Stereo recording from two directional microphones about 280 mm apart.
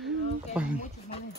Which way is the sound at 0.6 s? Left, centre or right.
Centre.